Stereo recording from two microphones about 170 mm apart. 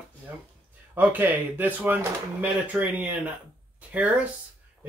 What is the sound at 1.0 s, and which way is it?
Speech, 10° right (ahead or behind).